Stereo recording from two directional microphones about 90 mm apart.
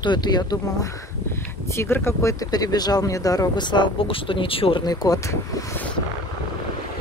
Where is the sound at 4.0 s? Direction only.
80° left.